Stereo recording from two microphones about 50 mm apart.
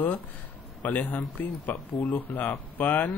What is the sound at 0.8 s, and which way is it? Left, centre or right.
Speech, left.